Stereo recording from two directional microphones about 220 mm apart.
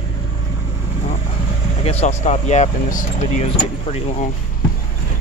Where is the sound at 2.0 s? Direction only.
30° left (ahead or behind).